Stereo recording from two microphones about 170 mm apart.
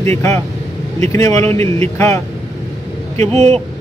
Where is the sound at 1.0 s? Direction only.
20° left (ahead or behind).